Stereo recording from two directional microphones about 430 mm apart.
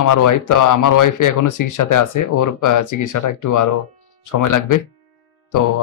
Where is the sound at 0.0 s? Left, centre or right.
Left.